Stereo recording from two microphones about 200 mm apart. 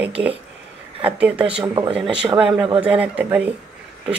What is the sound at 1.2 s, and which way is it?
Speech, 5° right (ahead or behind).